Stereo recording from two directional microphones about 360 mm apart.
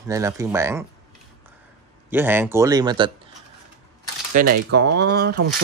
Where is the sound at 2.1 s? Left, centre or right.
Centre.